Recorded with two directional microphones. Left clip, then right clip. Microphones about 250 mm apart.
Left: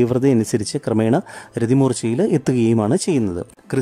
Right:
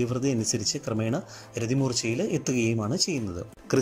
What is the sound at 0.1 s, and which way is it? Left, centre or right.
Speech, left.